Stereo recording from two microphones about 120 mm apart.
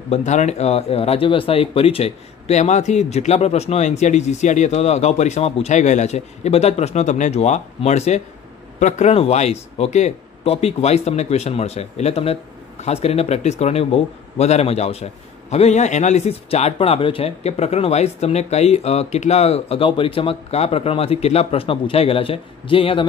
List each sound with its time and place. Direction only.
0.1 s speech: 80° left; by 23.0 s 50° left (ahead or behind)